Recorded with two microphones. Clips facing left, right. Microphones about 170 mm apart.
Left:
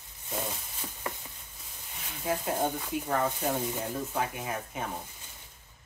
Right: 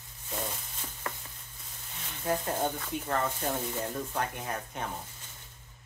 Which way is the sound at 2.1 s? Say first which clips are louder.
Even; 5° left (ahead or behind).